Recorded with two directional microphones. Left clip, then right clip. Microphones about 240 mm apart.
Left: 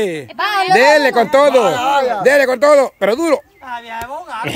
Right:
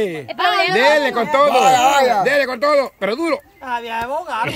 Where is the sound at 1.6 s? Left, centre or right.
Right.